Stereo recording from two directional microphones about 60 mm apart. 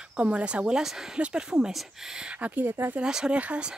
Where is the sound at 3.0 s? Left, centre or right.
Centre.